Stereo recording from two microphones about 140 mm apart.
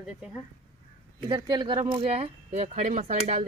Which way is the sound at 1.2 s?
30° right (ahead or behind).